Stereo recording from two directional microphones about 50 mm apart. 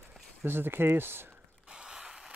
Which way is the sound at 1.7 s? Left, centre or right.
Centre.